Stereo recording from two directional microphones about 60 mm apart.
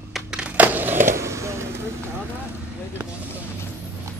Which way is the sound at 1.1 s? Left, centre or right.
Right.